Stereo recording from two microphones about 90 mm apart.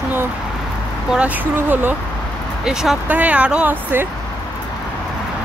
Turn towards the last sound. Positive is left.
turn(degrees=-15)  # may be behind; listen again after turning